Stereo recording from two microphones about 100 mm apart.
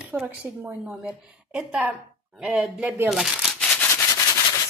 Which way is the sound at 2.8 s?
15° right (ahead or behind).